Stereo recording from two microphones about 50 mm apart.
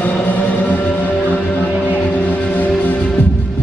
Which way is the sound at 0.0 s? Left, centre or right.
Left.